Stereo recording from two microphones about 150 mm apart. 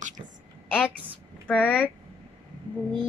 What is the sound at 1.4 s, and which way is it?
Speech, 10° left (ahead or behind).